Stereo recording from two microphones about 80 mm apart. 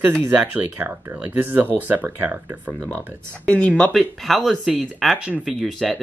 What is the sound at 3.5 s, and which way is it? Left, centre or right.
Speech, centre.